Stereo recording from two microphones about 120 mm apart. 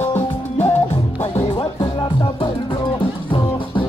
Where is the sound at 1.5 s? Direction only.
40° left (ahead or behind).